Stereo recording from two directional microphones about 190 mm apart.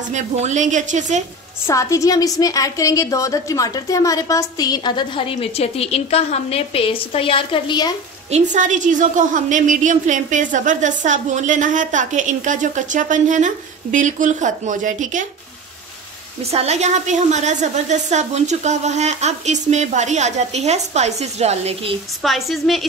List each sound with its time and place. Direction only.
0.1 s a woman's voice: 40° right (ahead or behind)
1.7 s a woman's voice: 15° left (ahead or behind)
8.3 s a woman's voice: 40° right (ahead or behind)
16.4 s a woman's voice: 35° right (ahead or behind)
22.2 s a woman's voice: centre (ahead or behind)